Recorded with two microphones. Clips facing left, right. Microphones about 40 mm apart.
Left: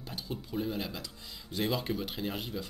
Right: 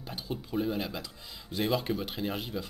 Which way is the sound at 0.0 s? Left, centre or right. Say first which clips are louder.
Right 2 dB; centre.